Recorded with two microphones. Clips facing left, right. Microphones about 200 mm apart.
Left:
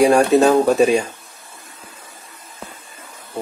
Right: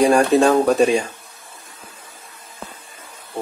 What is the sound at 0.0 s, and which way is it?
Speech, 10° left (ahead or behind).